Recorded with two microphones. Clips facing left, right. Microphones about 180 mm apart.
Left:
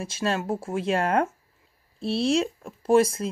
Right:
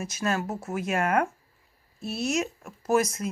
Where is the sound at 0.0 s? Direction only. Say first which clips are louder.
Left 1 dB; 30° left (ahead or behind).